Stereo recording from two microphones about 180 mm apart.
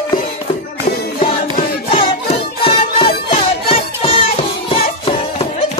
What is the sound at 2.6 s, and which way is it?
Music, 30° left (ahead or behind).